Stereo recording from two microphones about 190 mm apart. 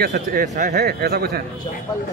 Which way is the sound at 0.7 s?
55° right (ahead or behind).